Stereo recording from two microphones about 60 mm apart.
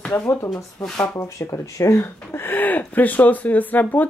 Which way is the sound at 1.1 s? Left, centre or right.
Left.